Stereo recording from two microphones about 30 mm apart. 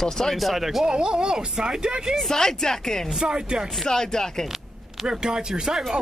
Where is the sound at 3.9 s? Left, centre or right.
Left.